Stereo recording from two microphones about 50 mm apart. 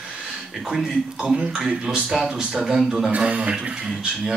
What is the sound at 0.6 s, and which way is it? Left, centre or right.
Speech, centre.